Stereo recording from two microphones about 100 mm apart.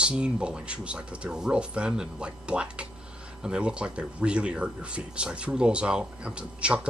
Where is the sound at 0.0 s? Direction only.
10° right (ahead or behind).